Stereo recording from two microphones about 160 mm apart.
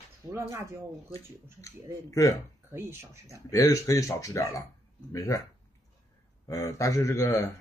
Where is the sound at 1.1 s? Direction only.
20° left (ahead or behind).